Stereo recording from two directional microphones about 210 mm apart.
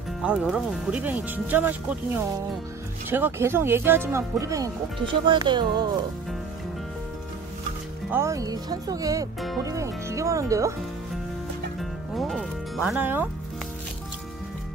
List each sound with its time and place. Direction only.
0.2 s speech: 5° right (ahead or behind)
3.1 s speech: 10° right (ahead or behind)
8.1 s speech: 15° right (ahead or behind)
11.8 s speech: centre (ahead or behind)